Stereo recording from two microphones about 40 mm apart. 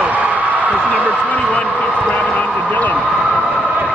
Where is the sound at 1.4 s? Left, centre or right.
Left.